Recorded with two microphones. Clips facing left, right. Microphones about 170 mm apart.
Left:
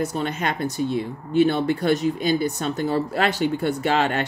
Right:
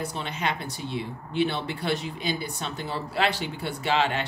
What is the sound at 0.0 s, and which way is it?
Speech, 45° left (ahead or behind).